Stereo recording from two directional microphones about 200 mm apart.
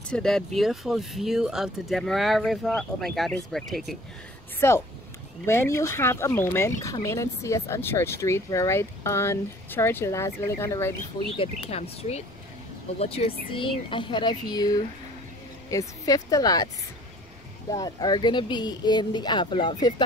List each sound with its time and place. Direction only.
0.1 s speech: centre (ahead or behind)
4.6 s speech: 15° left (ahead or behind)
11.3 s speech: 30° left (ahead or behind)
17.6 s speech: 20° left (ahead or behind)